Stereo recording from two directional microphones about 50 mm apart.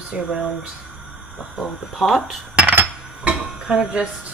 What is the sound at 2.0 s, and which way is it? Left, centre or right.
Speech, centre.